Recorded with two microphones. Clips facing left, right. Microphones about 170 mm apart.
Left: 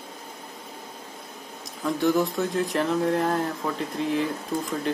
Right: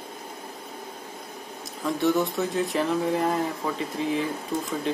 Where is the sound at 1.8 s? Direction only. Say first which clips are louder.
Left 1 dB; centre (ahead or behind).